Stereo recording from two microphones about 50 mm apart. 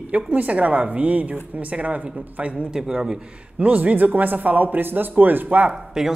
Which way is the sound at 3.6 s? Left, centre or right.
Right.